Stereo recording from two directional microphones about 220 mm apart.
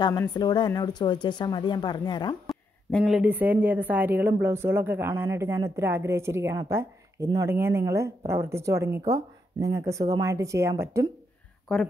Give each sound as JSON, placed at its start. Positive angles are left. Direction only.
{"t": 0.0, "sound": "speech", "side_deg": 20}
{"t": 2.9, "sound": "a woman's voice", "side_deg": 0}